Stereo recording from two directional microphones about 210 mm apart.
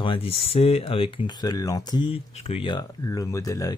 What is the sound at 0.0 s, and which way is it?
Speech, 25° left (ahead or behind).